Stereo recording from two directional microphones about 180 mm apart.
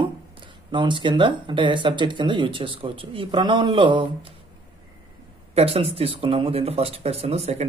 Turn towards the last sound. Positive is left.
turn(degrees=-35)  # may be behind; listen again after turning